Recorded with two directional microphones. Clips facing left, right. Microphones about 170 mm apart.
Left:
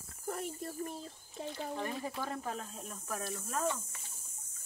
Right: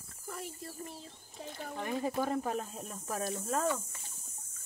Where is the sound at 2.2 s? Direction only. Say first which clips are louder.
Right 6 dB; 15° right (ahead or behind).